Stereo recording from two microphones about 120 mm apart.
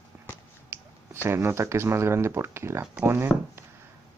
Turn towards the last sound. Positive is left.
turn(degrees=-20)  # may be behind; listen again after turning